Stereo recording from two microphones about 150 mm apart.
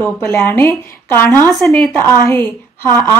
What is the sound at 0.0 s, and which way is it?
A woman's voice, 15° left (ahead or behind).